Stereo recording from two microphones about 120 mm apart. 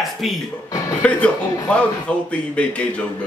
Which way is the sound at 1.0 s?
10° left (ahead or behind).